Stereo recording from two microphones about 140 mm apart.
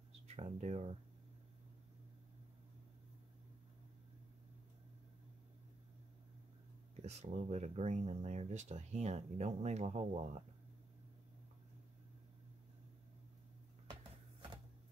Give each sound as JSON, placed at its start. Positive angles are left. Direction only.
{"t": 0.4, "sound": "speech", "side_deg": -50}
{"t": 7.0, "sound": "speech", "side_deg": -50}